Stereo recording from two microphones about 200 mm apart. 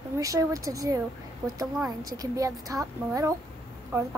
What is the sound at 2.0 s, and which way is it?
A woman's voice, 20° right (ahead or behind).